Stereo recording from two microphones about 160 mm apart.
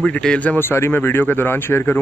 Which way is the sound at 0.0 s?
5° left (ahead or behind).